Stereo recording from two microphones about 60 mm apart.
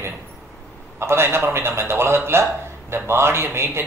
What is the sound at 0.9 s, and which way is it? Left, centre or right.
A man's voice, right.